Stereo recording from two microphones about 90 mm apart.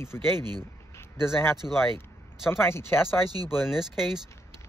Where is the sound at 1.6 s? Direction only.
20° left (ahead or behind).